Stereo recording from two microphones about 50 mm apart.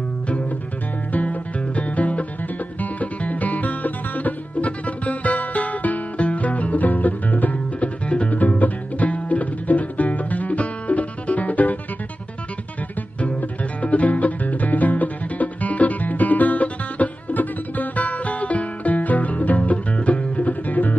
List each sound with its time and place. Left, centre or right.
1.1 s music: left
13.2 s music: left